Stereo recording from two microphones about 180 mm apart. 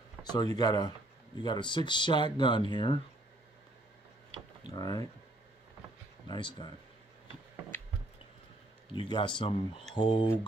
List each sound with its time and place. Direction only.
0.2 s speech: 20° left (ahead or behind)
4.6 s speech: 20° left (ahead or behind)
6.2 s speech: 25° left (ahead or behind)
8.9 s speech: 25° left (ahead or behind)